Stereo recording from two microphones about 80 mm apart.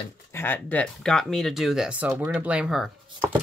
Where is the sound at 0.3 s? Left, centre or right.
Left.